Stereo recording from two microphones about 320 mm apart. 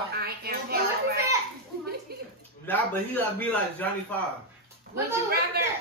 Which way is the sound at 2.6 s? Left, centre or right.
Centre.